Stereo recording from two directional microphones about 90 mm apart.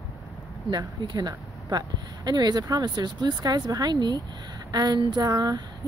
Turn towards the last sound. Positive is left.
turn(degrees=-45)  # may be behind; listen again after turning